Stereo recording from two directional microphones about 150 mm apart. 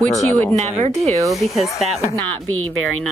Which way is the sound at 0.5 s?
45° right (ahead or behind).